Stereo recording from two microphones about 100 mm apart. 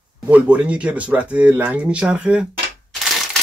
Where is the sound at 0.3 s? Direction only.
15° right (ahead or behind).